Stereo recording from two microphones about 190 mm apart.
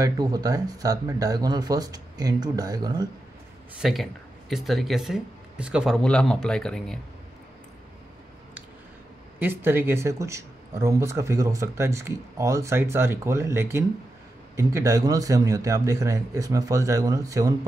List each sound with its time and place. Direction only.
0.0 s speech: 20° right (ahead or behind)
3.8 s speech: centre (ahead or behind)
9.4 s speech: 10° right (ahead or behind)